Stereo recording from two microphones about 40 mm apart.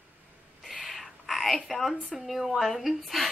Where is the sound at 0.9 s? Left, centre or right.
Centre.